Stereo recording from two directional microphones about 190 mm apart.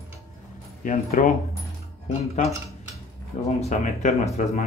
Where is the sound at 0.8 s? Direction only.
45° left (ahead or behind).